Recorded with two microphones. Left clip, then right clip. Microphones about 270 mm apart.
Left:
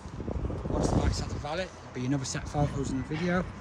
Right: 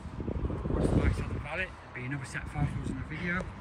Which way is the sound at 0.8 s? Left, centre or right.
Centre.